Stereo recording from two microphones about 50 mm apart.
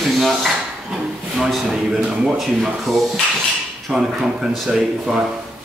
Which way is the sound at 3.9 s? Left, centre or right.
Centre.